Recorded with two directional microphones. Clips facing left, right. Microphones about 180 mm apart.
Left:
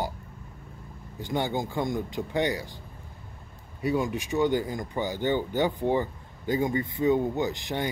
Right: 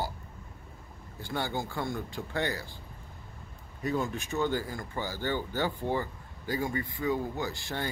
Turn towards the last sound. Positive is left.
turn(degrees=15)  # may be behind; listen again after turning